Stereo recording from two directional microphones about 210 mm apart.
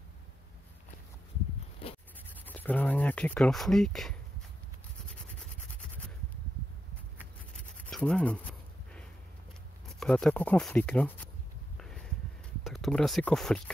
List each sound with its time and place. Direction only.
1.8 s zipper: 25° left (ahead or behind)
2.4 s speech: 10° left (ahead or behind)
5.3 s rub: 5° left (ahead or behind)
7.8 s a sound: 5° left (ahead or behind)
9.9 s speech: centre (ahead or behind)
11.7 s a sound: 5° left (ahead or behind)
12.6 s speech: centre (ahead or behind)